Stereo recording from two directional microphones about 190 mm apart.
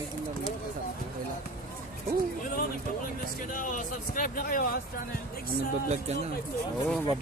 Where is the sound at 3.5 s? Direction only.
45° left (ahead or behind).